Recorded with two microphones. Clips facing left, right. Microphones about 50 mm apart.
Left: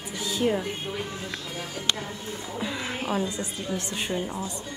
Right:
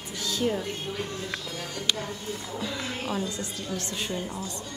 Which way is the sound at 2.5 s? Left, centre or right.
Centre.